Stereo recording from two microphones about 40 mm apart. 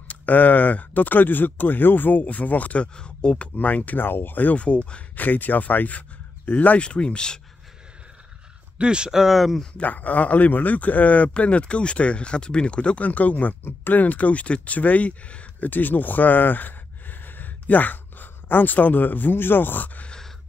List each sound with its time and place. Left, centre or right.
0.1 s speech: left
2.2 s speech: left
3.5 s speech: left
4.0 s speech: left
4.6 s speech: left
5.1 s speech: left
6.8 s speech: left
8.7 s speech: right
9.1 s speech: centre
9.8 s speech: left
13.0 s speech: left
13.7 s speech: left
15.6 s speech: left